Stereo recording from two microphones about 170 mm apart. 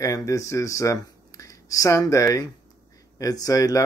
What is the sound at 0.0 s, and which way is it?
Speech, 20° left (ahead or behind).